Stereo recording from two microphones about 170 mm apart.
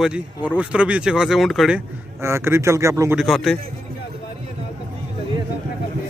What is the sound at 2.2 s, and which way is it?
Speech, 15° right (ahead or behind).